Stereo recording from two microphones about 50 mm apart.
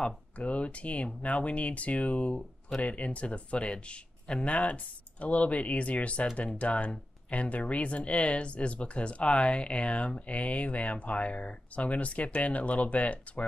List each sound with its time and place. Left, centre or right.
0.0 s speech: left